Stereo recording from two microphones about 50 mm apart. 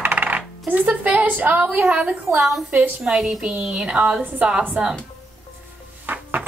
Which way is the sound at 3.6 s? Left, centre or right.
Centre.